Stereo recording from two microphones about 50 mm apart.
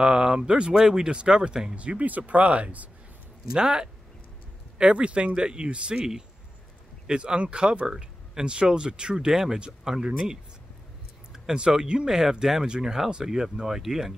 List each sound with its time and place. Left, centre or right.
0.0 s speech: centre
1.8 s speech: right
3.5 s speech: centre